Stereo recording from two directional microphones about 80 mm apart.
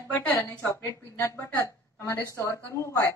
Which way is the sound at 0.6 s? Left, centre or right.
Left.